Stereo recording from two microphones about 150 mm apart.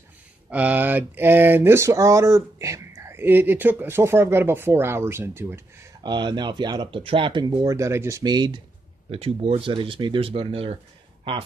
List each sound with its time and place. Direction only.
0.5 s speech: 10° right (ahead or behind)
6.0 s speech: 30° right (ahead or behind)
9.1 s speech: 40° right (ahead or behind)